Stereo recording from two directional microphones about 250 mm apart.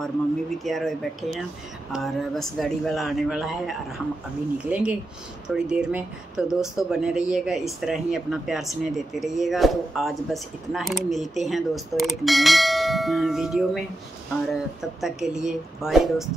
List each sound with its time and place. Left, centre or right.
0.7 s speech: centre